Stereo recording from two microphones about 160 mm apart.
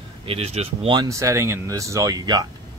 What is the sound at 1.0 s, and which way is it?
Speech, 20° right (ahead or behind).